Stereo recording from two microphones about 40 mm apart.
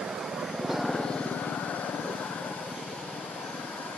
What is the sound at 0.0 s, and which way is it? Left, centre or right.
Vehicle, centre.